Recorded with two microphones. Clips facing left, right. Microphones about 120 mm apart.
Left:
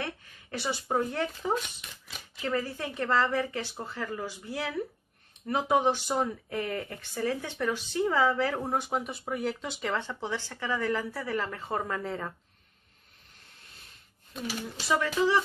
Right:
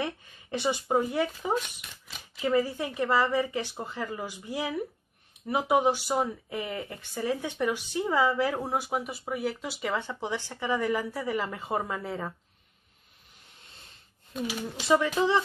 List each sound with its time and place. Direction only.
0.0 s a sound: 20° right (ahead or behind)
1.1 s speech: 10° right (ahead or behind)
14.9 s speech: 20° right (ahead or behind)